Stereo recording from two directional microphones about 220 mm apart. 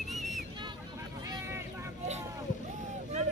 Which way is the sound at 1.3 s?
10° right (ahead or behind).